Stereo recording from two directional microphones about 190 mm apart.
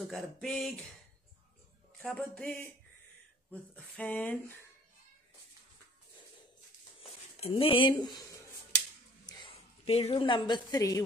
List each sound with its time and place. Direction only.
0.1 s speech: centre (ahead or behind)
2.0 s speech: 5° left (ahead or behind)
3.7 s speech: 10° left (ahead or behind)
7.3 s speech: 30° left (ahead or behind)
9.2 s speech: 25° left (ahead or behind)